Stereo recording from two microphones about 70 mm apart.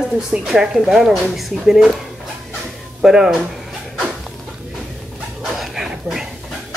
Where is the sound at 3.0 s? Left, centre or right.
Centre.